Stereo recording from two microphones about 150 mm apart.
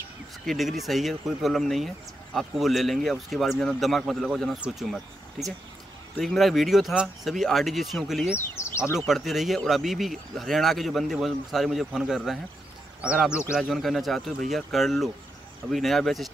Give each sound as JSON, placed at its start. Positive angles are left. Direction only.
{"t": 0.5, "sound": "speech", "side_deg": 0}
{"t": 6.1, "sound": "speech", "side_deg": 0}
{"t": 8.5, "sound": "speech", "side_deg": 20}
{"t": 8.9, "sound": "a man's voice", "side_deg": 0}